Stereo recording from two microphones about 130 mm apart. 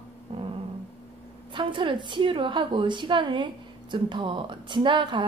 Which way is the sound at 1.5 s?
40° right (ahead or behind).